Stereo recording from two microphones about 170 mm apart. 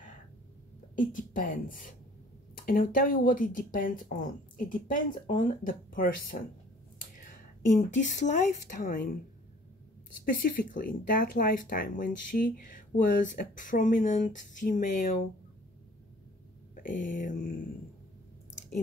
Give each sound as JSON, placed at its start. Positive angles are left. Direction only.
{"t": 0.9, "sound": "speech", "side_deg": 50}
{"t": 7.9, "sound": "speech", "side_deg": 45}
{"t": 10.4, "sound": "speech", "side_deg": 55}
{"t": 17.1, "sound": "speech", "side_deg": 50}